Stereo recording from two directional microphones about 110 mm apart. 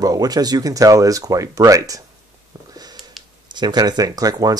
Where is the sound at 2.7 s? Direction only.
35° right (ahead or behind).